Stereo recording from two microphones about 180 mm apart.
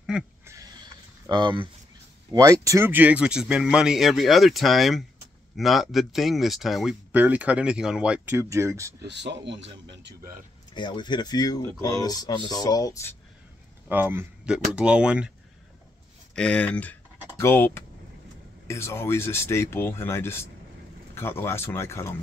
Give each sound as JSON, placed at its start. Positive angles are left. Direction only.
{"t": 0.1, "sound": "speech", "side_deg": -5}
{"t": 0.5, "sound": "a sound", "side_deg": -20}
{"t": 2.3, "sound": "speech", "side_deg": -20}
{"t": 9.0, "sound": "speech", "side_deg": -75}
{"t": 10.7, "sound": "speech", "side_deg": 25}
{"t": 13.8, "sound": "speech", "side_deg": -10}
{"t": 16.3, "sound": "speech", "side_deg": 5}